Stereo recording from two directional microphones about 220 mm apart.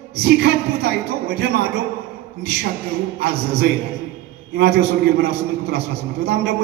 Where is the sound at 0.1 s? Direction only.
50° right (ahead or behind).